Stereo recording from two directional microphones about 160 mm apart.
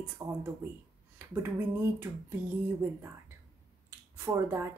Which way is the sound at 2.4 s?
10° right (ahead or behind).